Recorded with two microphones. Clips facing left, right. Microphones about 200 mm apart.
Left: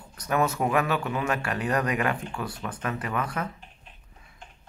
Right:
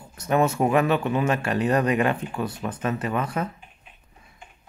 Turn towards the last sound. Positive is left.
turn(degrees=-25)  # may be behind; listen again after turning